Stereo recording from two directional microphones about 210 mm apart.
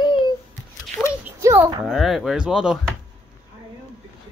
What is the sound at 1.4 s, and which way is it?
Cattle, 15° right (ahead or behind).